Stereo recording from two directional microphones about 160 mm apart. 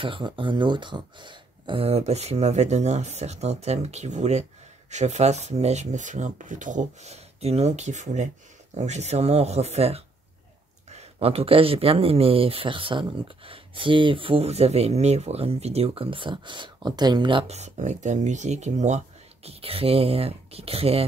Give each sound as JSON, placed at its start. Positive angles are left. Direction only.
{"t": 0.0, "sound": "speech", "side_deg": -30}